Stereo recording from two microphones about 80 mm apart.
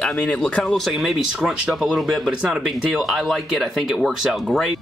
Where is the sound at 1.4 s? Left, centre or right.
Centre.